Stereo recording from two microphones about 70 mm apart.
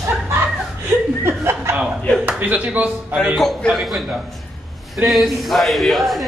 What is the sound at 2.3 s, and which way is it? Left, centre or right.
Speech, right.